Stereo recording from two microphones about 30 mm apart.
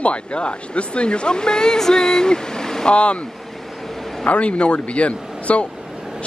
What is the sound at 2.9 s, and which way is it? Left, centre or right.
Speech, left.